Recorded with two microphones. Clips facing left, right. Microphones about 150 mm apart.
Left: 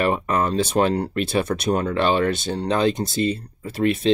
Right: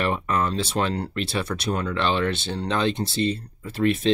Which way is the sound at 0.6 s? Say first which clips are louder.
Left 6 dB; 50° left (ahead or behind).